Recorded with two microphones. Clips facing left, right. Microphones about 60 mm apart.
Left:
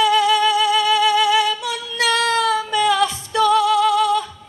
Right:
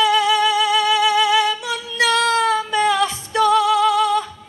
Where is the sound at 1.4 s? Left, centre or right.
Right.